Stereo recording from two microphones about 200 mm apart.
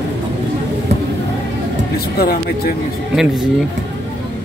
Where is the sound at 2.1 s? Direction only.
50° left (ahead or behind).